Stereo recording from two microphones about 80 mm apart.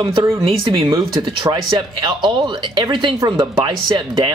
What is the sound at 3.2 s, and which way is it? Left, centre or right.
Speech, right.